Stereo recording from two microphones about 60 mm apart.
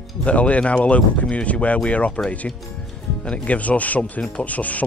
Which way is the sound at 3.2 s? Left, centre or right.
Left.